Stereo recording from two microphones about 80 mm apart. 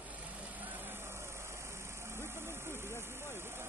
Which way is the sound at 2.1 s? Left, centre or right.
Right.